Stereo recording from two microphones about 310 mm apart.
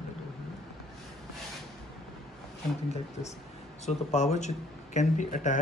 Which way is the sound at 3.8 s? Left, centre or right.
Left.